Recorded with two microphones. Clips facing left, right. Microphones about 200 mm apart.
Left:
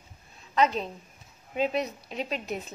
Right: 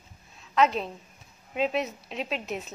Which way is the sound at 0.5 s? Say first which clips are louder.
Right 1 dB; centre (ahead or behind).